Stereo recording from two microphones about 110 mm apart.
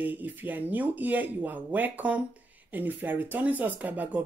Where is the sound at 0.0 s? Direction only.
15° right (ahead or behind).